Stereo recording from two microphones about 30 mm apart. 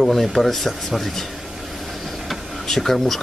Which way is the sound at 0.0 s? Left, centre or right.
Centre.